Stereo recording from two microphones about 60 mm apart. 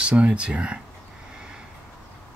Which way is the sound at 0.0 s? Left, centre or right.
Centre.